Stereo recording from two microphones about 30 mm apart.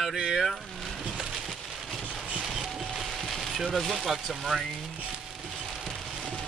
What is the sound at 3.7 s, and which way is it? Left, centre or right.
Speech, centre.